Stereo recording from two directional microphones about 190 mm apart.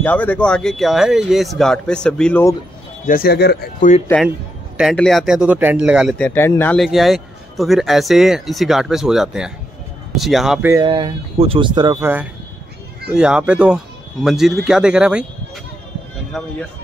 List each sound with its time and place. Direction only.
0.0 s speech: 10° left (ahead or behind)
3.1 s speech: 55° left (ahead or behind)
4.7 s speech: centre (ahead or behind)
6.1 s speech: 10° left (ahead or behind)
10.7 s speech: 25° right (ahead or behind)
13.1 s speech: 5° right (ahead or behind)
16.3 s speech: centre (ahead or behind)